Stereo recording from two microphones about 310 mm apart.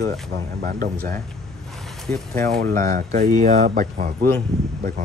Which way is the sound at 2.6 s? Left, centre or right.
Right.